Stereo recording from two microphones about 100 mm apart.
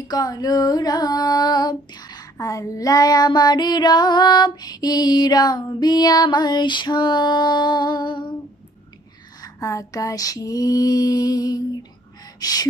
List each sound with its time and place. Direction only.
0.1 s child singing: 40° left (ahead or behind)
9.4 s female singing: 35° left (ahead or behind)
12.4 s music: 40° left (ahead or behind)